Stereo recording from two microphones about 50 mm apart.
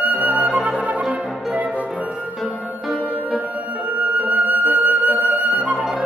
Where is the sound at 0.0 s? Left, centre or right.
Right.